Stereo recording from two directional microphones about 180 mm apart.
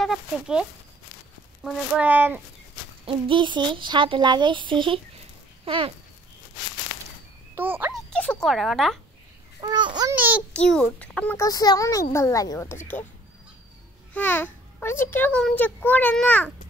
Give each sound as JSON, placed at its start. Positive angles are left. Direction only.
{"t": 0.0, "sound": "speech", "side_deg": -5}
{"t": 3.1, "sound": "speech", "side_deg": -25}
{"t": 7.5, "sound": "a child's voice", "side_deg": -10}
{"t": 8.1, "sound": "speech", "side_deg": 5}
{"t": 9.6, "sound": "speech", "side_deg": -25}
{"t": 10.1, "sound": "speech", "side_deg": -10}
{"t": 10.5, "sound": "a child's voice", "side_deg": 5}
{"t": 14.1, "sound": "a child's voice", "side_deg": 10}